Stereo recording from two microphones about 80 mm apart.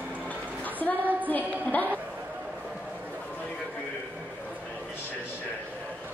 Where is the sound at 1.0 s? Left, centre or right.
Right.